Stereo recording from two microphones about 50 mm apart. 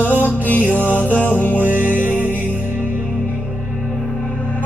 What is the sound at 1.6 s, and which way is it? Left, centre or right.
Music, right.